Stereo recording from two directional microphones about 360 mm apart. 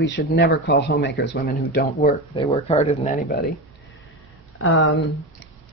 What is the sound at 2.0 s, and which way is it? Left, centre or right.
Speech, centre.